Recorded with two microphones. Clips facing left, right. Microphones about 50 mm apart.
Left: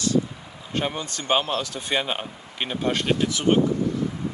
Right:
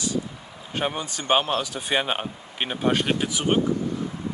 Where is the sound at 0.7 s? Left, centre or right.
Centre.